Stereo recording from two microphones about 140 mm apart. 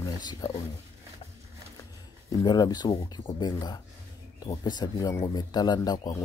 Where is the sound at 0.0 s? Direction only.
30° left (ahead or behind).